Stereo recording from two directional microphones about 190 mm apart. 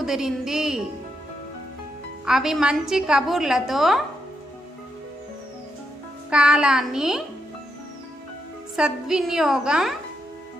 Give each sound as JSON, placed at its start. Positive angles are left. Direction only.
{"t": 0.0, "sound": "a woman's voice", "side_deg": -5}
{"t": 2.2, "sound": "a woman's voice", "side_deg": 0}
{"t": 6.3, "sound": "a woman's voice", "side_deg": -5}
{"t": 8.7, "sound": "a woman's voice", "side_deg": -5}